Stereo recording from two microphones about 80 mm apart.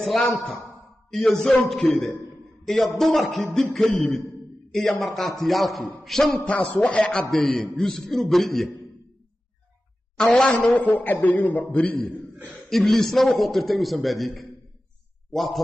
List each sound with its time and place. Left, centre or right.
0.0 s a man's voice: centre
6.4 s speech: centre
7.2 s a man's voice: centre
10.1 s a man's voice: centre
12.6 s a man's voice: centre